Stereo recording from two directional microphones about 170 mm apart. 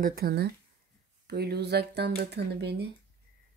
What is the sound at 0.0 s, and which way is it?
Speech, 60° right (ahead or behind).